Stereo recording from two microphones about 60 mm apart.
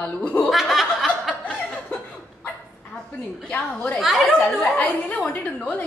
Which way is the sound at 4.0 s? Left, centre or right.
Centre.